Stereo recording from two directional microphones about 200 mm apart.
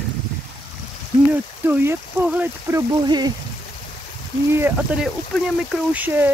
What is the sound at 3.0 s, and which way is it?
Speech, 20° right (ahead or behind).